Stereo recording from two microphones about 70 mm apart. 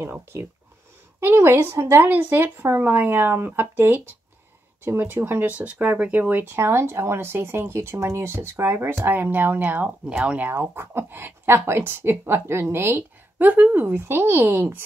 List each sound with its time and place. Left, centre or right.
1.2 s speech: right
2.0 s speech: right
6.5 s speech: right; by 10.5 s centre
10.5 s speech: right